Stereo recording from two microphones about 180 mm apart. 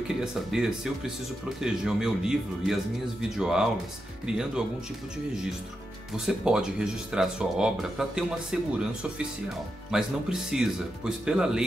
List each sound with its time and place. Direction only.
0.1 s speech: 5° right (ahead or behind)
6.1 s speech: 5° right (ahead or behind)
9.9 s speech: 5° right (ahead or behind)